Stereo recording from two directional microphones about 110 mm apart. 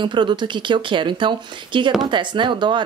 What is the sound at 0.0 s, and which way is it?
A woman's voice, 45° right (ahead or behind).